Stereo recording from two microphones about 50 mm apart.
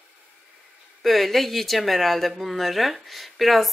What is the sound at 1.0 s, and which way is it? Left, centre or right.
A woman's voice, centre.